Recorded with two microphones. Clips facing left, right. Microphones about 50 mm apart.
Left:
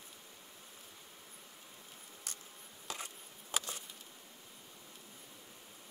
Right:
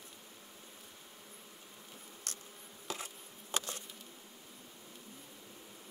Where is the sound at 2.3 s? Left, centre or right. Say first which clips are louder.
Right 2 dB; centre.